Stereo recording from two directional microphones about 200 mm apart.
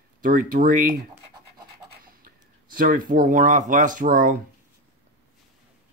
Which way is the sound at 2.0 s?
45° right (ahead or behind).